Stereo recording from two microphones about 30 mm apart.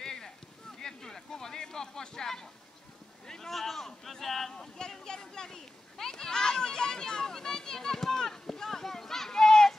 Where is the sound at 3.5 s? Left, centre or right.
Centre.